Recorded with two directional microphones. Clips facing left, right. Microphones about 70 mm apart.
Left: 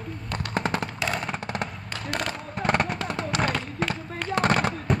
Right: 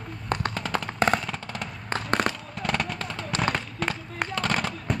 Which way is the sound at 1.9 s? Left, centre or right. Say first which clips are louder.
Right 8 dB; right.